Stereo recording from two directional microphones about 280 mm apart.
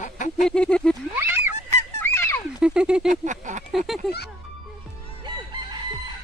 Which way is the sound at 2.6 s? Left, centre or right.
Centre.